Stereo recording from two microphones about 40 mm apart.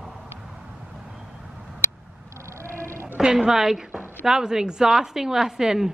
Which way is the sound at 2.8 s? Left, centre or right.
Right.